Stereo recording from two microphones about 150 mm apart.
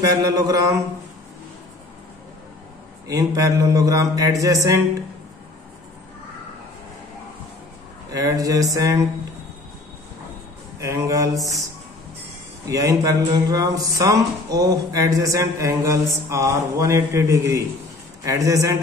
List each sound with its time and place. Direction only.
0.0 s speech: 25° right (ahead or behind)
3.1 s speech: 25° right (ahead or behind)
8.1 s speech: 25° right (ahead or behind)
10.8 s speech: 20° right (ahead or behind)
12.6 s speech: 25° right (ahead or behind)